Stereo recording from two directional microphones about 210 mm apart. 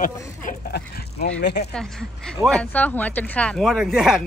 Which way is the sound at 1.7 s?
5° left (ahead or behind).